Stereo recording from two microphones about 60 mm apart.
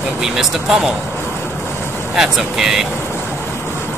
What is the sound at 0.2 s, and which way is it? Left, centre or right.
Speech, centre.